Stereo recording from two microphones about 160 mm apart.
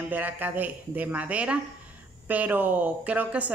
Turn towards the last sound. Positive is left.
turn(degrees=-10)  # may be behind; listen again after turning